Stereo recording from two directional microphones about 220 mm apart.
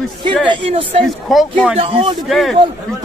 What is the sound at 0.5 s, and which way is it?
Speech, 25° right (ahead or behind).